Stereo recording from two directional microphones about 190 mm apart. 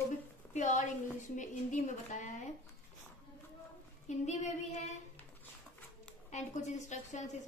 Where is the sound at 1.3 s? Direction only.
40° left (ahead or behind).